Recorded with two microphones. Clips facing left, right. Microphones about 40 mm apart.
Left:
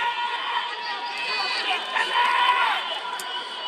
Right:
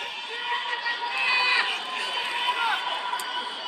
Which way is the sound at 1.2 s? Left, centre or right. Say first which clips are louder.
Right 6 dB; right.